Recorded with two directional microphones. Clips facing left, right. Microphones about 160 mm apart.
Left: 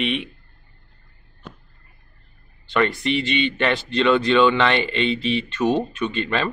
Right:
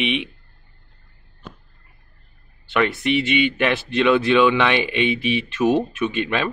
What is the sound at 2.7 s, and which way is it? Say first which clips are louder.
Speech: right 1 dB; 5° right (ahead or behind).